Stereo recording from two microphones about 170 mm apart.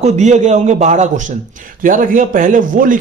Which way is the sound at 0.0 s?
40° right (ahead or behind).